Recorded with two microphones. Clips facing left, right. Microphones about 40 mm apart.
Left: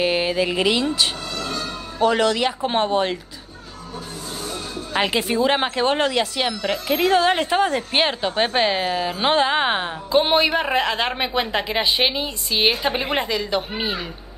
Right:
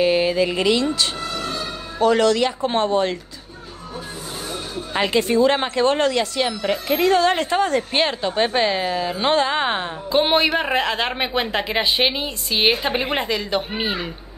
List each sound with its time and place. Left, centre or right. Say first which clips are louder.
0.0 s speech: right 3 dB; centre
1.2 s music: right 2 dB; right
2.0 s speech: right 2 dB; centre
4.9 s speech: right 2 dB; centre
10.1 s speech: even; centre